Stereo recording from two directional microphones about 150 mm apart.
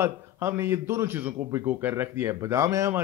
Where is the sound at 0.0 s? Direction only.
15° right (ahead or behind).